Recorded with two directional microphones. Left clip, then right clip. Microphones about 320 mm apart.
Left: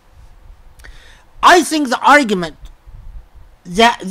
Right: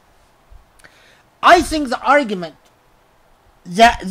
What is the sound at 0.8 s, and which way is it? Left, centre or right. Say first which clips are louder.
A woman's voice: left 4 dB; centre.